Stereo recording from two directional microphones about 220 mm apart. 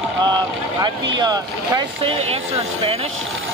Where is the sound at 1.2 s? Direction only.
20° right (ahead or behind).